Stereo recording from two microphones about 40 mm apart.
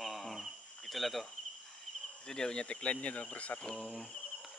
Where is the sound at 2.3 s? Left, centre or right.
Centre; by 3.6 s left.